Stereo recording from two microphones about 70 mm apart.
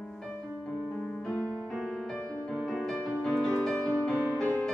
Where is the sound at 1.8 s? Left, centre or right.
Centre.